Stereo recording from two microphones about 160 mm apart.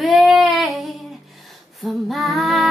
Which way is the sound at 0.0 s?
Centre (ahead or behind).